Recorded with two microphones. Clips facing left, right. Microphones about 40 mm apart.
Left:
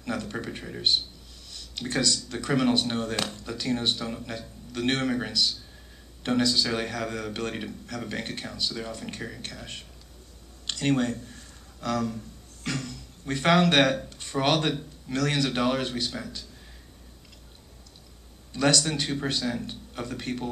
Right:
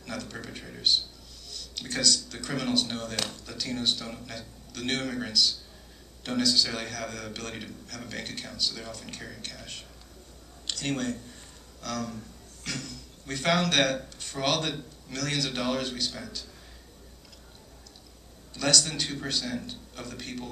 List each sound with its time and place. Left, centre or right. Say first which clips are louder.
0.0 s a man's voice: left 6 dB; left
18.5 s a man's voice: left 3 dB; centre